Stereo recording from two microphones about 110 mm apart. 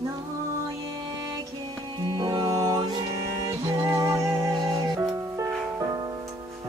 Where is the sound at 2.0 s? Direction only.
40° right (ahead or behind).